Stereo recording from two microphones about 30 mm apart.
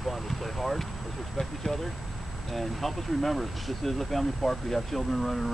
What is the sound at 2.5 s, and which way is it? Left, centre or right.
Speech, centre.